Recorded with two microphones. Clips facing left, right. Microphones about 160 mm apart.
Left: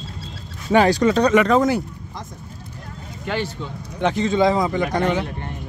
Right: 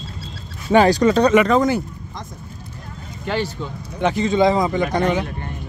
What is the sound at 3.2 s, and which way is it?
Speech, 35° right (ahead or behind).